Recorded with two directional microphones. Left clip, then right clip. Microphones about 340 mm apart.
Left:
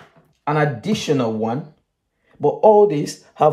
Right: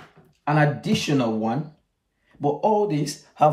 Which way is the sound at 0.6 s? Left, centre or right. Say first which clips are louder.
Left 1 dB; centre.